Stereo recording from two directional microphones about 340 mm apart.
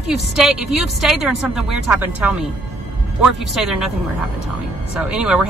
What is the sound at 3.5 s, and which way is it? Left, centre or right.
Speech, centre.